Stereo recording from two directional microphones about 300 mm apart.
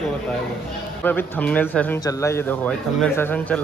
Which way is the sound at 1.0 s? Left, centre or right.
Centre.